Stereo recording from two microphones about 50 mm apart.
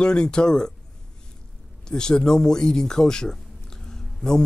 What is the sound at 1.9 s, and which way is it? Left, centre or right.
Speech, centre.